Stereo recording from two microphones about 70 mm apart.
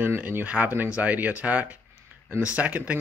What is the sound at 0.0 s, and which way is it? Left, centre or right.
Speech, right.